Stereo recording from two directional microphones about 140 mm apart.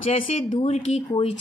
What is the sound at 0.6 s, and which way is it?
Speech, 50° left (ahead or behind).